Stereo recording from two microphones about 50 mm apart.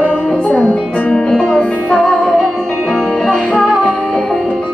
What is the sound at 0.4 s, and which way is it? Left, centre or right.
Music, left.